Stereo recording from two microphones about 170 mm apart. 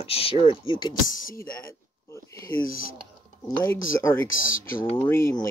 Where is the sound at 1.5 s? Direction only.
15° left (ahead or behind).